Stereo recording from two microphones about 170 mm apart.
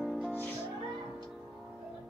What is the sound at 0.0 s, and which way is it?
Music, centre (ahead or behind).